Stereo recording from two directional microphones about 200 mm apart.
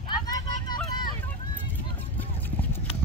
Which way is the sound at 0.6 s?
20° left (ahead or behind).